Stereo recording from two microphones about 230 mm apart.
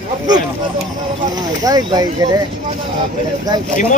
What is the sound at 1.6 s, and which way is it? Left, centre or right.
Speech, centre.